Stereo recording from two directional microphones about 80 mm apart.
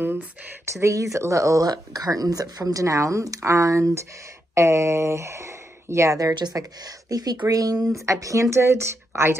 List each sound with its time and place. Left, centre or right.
0.0 s a sound: right
0.7 s speech: right
6.3 s speech: right